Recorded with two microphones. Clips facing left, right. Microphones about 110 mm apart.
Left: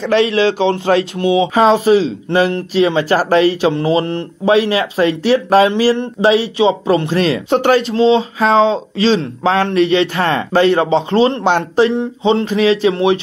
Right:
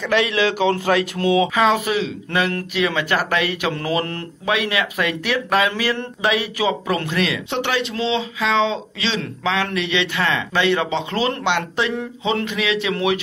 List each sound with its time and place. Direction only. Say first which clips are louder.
0.0 s speech: left 6 dB; 30° left (ahead or behind)
1.5 s speech: left 8 dB; 35° left (ahead or behind)